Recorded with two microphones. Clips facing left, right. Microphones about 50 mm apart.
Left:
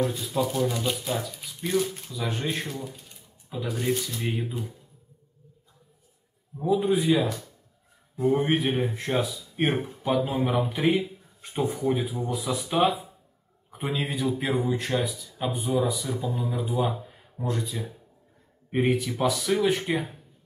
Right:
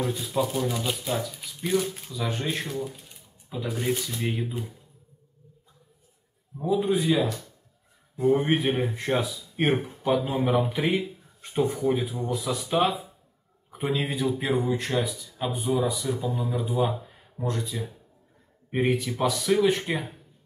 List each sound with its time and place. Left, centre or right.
0.0 s speech: centre
4.3 s speech: left
6.6 s speech: centre
8.4 s a man's voice: centre
18.9 s speech: centre